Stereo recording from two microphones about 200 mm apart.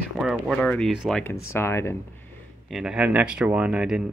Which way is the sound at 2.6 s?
Centre (ahead or behind).